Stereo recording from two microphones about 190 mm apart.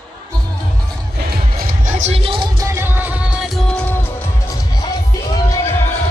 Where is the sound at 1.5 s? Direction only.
45° right (ahead or behind); by 2.6 s 25° right (ahead or behind).